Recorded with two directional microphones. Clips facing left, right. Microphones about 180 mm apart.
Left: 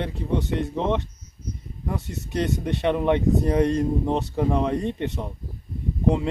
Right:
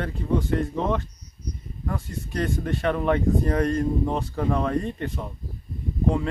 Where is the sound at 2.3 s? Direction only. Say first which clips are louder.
Left 2 dB; 25° left (ahead or behind).